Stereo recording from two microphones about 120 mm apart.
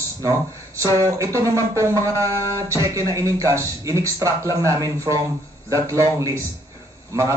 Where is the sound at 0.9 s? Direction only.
30° right (ahead or behind).